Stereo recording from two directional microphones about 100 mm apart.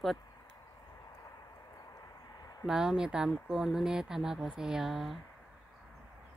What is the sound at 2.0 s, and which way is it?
Vehicle, 40° left (ahead or behind).